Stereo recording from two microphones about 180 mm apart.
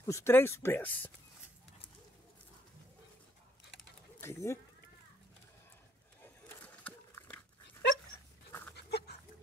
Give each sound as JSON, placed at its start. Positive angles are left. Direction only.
{"t": 0.0, "sound": "speech", "side_deg": 15}
{"t": 4.2, "sound": "speech", "side_deg": 15}
{"t": 6.2, "sound": "a sound", "side_deg": 10}
{"t": 8.5, "sound": "dog", "side_deg": 10}
{"t": 8.7, "sound": "dog", "side_deg": 65}